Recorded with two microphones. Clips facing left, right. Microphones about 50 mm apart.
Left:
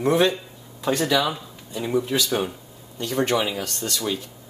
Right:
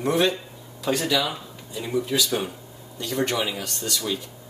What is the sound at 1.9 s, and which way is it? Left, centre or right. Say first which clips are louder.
Speech: left 1 dB; left.